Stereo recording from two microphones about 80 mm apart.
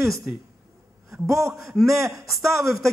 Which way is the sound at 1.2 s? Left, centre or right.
Right.